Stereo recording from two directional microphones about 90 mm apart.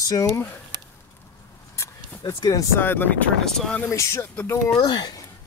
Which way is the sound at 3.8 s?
35° left (ahead or behind).